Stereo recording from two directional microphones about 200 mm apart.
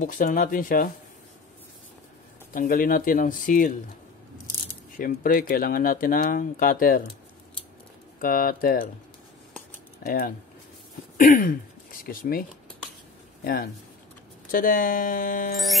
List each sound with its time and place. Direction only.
0.0 s speech: 40° left (ahead or behind)
2.5 s speech: 45° left (ahead or behind)
4.9 s speech: 45° left (ahead or behind)
8.2 s speech: 45° left (ahead or behind)
10.0 s speech: 45° left (ahead or behind)
15.5 s music: centre (ahead or behind)